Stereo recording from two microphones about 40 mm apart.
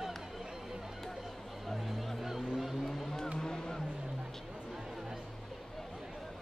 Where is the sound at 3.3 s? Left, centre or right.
Centre.